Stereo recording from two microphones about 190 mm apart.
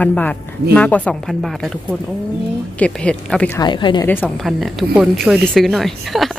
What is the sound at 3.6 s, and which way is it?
Speech, 25° left (ahead or behind).